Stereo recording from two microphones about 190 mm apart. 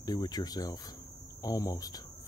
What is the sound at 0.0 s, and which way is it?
Speech, 20° left (ahead or behind).